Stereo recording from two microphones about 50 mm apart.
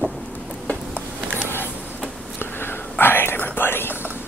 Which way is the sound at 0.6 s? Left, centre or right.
Left.